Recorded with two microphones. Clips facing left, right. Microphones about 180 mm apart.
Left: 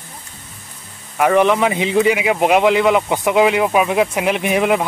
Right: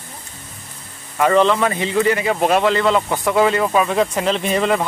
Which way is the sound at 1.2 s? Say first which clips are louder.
Left 1 dB; 15° left (ahead or behind).